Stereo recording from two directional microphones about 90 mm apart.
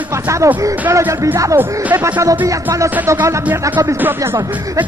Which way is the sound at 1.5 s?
20° right (ahead or behind).